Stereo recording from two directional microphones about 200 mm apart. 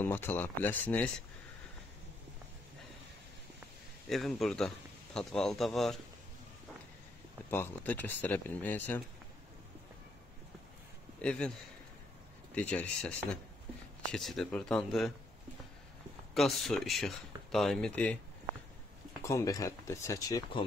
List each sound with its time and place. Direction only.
0.0 s speech: 10° left (ahead or behind)
4.1 s speech: centre (ahead or behind)
7.5 s speech: 10° left (ahead or behind)
11.1 s a man's voice: 5° left (ahead or behind)
12.5 s speech: 5° left (ahead or behind)
16.3 s speech: centre (ahead or behind)
19.2 s speech: 15° left (ahead or behind)